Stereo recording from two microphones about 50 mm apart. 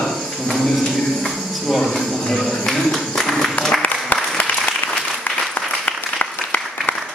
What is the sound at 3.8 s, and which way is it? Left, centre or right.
Applause, left.